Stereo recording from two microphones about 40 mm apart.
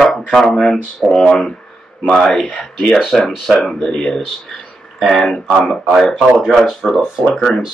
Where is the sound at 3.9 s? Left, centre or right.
Centre.